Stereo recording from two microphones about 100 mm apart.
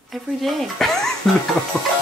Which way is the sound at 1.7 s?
25° left (ahead or behind).